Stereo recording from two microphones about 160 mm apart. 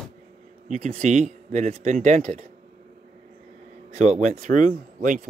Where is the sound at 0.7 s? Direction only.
45° right (ahead or behind).